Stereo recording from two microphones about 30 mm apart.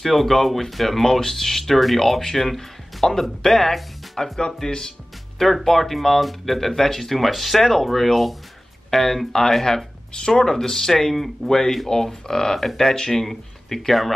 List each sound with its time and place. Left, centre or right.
0.0 s speech: centre
4.2 s speech: left
5.4 s speech: centre